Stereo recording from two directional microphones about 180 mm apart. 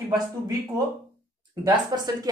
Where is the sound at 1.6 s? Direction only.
20° right (ahead or behind).